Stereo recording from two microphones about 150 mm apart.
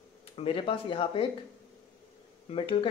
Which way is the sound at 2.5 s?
35° left (ahead or behind).